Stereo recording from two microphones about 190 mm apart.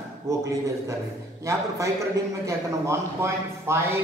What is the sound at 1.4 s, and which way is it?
A man's voice, 15° right (ahead or behind).